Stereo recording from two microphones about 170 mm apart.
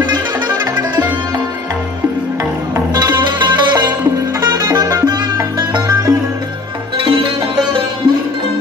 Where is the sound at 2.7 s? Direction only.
25° right (ahead or behind).